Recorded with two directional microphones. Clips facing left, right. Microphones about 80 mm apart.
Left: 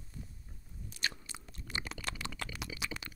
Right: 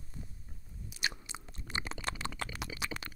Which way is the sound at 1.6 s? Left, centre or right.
Right.